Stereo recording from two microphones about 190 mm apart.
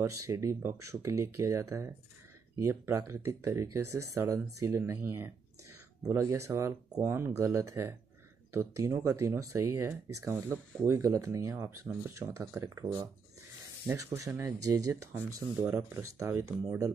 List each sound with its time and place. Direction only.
0.3 s speech: 15° right (ahead or behind)